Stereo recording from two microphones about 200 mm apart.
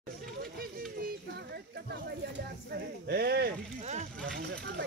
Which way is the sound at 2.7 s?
55° right (ahead or behind).